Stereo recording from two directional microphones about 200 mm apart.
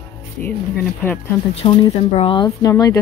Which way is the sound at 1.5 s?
25° left (ahead or behind).